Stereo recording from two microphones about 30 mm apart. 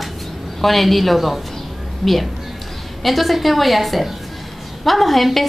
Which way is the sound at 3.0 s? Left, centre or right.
Centre.